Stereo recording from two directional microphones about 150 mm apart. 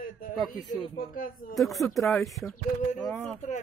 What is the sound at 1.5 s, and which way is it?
Speech, centre (ahead or behind).